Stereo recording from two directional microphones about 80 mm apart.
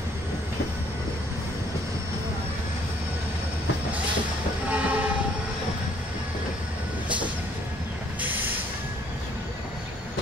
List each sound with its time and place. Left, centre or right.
4.6 s train: centre